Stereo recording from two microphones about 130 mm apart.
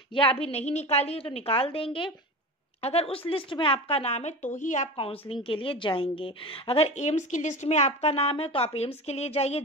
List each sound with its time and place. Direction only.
0.1 s a woman's voice: 45° left (ahead or behind); by 4.8 s 70° left (ahead or behind)
4.9 s a woman's voice: 45° left (ahead or behind)